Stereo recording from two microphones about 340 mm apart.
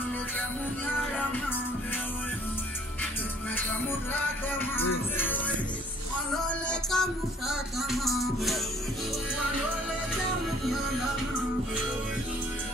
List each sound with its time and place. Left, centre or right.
4.1 s music: centre
6.7 s music: centre
10.6 s music: centre